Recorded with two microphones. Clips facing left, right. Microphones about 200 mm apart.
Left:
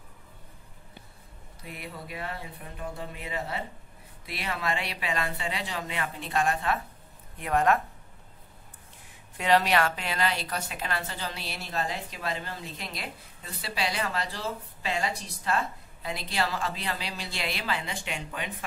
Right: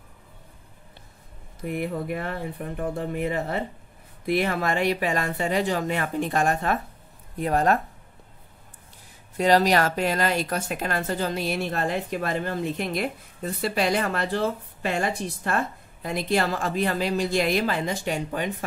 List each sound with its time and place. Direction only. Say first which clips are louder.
1.6 s a woman's voice: right 13 dB; 50° right (ahead or behind); by 7.8 s 35° right (ahead or behind)
9.4 s a woman's voice: right 4 dB; 40° right (ahead or behind)